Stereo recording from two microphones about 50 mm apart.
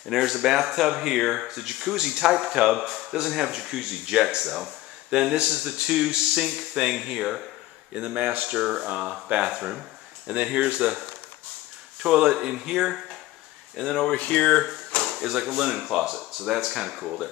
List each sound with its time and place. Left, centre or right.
0.1 s speech: centre
7.9 s speech: right
8.5 s speech: centre
13.7 s speech: centre
14.1 s speech: left
15.0 s speech: centre